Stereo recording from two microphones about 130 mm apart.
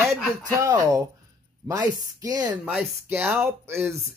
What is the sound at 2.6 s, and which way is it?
Speech, 10° right (ahead or behind).